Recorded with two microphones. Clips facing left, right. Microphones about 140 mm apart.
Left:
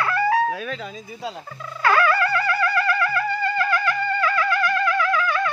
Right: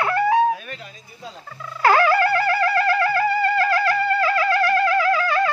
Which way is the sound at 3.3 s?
75° right (ahead or behind).